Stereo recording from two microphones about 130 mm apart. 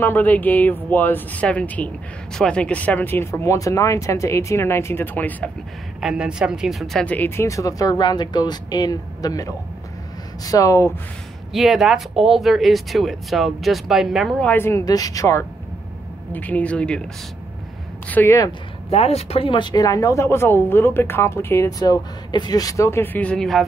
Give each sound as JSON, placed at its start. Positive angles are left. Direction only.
{"t": 0.0, "sound": "speech", "side_deg": 15}
{"t": 5.9, "sound": "speech", "side_deg": -5}
{"t": 11.5, "sound": "speech", "side_deg": 0}
{"t": 14.4, "sound": "speech", "side_deg": 15}
{"t": 14.9, "sound": "speech", "side_deg": 30}
{"t": 16.3, "sound": "speech", "side_deg": 15}
{"t": 18.0, "sound": "speech", "side_deg": 15}
{"t": 18.9, "sound": "speech", "side_deg": 50}